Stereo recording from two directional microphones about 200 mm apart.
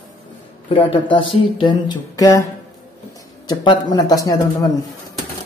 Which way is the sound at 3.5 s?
20° left (ahead or behind).